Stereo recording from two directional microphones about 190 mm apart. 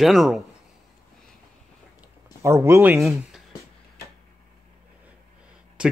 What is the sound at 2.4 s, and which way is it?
Speech, 15° right (ahead or behind).